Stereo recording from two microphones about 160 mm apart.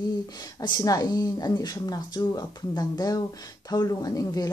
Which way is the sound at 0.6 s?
25° left (ahead or behind).